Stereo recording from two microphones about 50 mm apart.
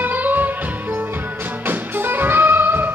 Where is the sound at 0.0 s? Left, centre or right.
Right.